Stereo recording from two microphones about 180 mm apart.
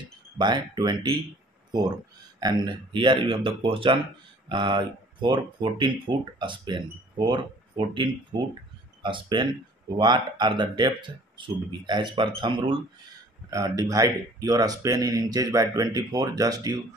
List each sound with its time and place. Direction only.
0.4 s speech: 25° right (ahead or behind)